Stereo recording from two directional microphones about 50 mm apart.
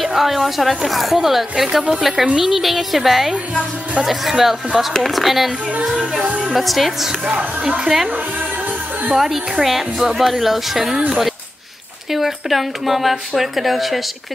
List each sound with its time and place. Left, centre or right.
0.0 s a woman's voice: centre
6.2 s a woman's voice: right
6.5 s a woman's voice: centre
9.1 s a woman's voice: centre
12.1 s a woman's voice: centre